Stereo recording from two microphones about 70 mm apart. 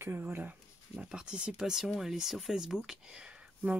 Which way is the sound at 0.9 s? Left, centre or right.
Centre.